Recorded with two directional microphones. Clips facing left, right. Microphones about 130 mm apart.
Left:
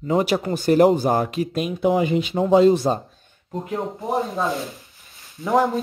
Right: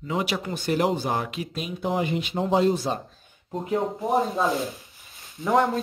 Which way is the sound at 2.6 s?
75° left (ahead or behind).